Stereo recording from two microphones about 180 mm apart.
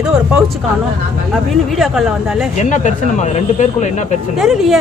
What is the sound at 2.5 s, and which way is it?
Speech, 40° left (ahead or behind).